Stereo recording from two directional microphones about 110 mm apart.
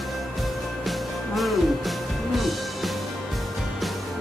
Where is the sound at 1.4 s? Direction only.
Centre (ahead or behind).